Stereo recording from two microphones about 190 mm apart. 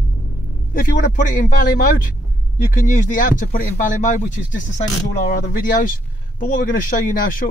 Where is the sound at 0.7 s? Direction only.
45° left (ahead or behind).